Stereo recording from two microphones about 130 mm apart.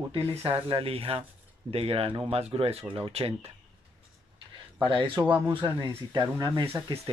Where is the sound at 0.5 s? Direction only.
45° right (ahead or behind).